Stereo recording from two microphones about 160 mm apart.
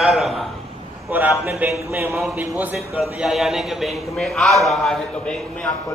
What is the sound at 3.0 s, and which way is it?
A man's voice, centre (ahead or behind).